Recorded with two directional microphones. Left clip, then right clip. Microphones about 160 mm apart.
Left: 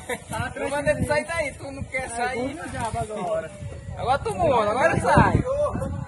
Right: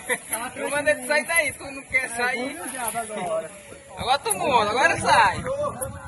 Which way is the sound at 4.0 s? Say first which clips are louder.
Left 1 dB; 90° left.